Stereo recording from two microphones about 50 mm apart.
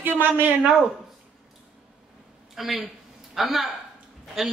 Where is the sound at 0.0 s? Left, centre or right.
Right.